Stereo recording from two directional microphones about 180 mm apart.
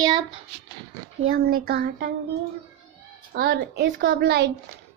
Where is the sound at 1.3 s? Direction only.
55° right (ahead or behind).